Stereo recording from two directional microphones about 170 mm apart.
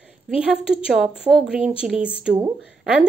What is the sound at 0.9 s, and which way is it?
A woman's voice, 5° right (ahead or behind).